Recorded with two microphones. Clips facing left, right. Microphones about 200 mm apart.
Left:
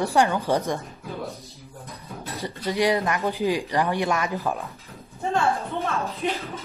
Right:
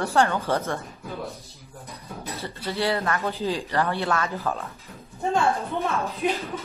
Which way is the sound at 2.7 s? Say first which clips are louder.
Left 3 dB; 15° left (ahead or behind).